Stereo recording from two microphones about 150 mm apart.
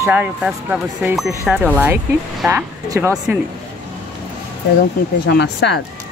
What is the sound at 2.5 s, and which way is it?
Speech, 20° right (ahead or behind).